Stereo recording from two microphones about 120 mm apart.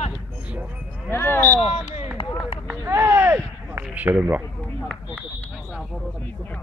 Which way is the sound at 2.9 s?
20° right (ahead or behind).